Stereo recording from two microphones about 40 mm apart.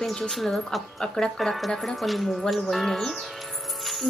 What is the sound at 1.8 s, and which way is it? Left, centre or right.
Speech, centre.